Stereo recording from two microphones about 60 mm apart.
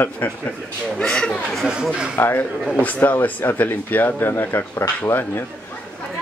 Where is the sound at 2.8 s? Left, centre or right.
Left.